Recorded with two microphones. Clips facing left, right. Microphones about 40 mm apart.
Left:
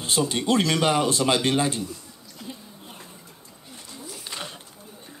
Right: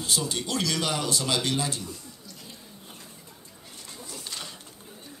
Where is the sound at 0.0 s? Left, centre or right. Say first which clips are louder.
Left 5 dB; left.